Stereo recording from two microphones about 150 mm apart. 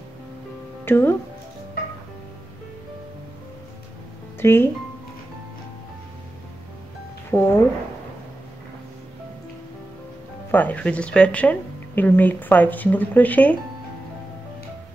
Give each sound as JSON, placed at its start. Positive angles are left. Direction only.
{"t": 0.8, "sound": "speech", "side_deg": 15}
{"t": 4.4, "sound": "speech", "side_deg": 15}
{"t": 7.2, "sound": "speech", "side_deg": 15}
{"t": 10.5, "sound": "speech", "side_deg": 10}